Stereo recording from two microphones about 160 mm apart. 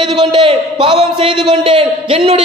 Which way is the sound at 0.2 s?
35° right (ahead or behind).